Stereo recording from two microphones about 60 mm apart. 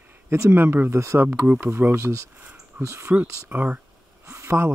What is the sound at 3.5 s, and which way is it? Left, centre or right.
Speech, right.